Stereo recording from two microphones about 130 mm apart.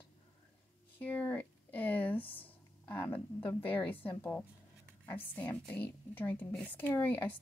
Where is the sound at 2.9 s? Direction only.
15° left (ahead or behind).